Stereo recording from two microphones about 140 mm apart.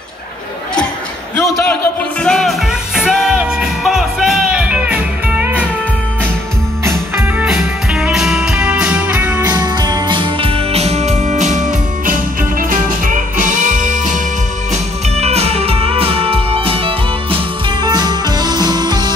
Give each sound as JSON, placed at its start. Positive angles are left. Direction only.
{"t": 2.2, "sound": "music", "side_deg": 5}
{"t": 7.4, "sound": "music", "side_deg": -5}
{"t": 9.5, "sound": "music", "side_deg": -30}
{"t": 12.1, "sound": "music", "side_deg": -80}
{"t": 14.7, "sound": "music", "side_deg": -50}
{"t": 17.8, "sound": "music", "side_deg": -30}